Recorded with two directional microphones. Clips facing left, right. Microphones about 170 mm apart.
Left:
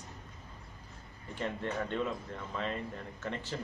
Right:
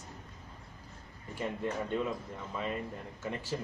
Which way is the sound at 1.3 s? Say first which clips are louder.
Right 1 dB; 10° right (ahead or behind).